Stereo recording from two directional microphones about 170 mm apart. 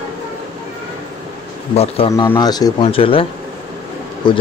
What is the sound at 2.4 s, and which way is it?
Speech, 25° left (ahead or behind).